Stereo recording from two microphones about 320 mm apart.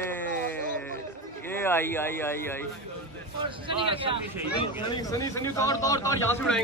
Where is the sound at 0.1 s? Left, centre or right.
Centre.